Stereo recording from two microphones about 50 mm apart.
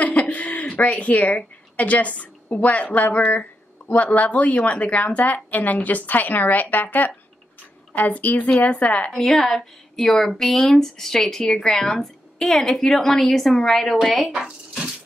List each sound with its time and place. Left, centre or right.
0.0 s a sound: left
0.7 s a woman's voice: left
9.1 s a woman's voice: centre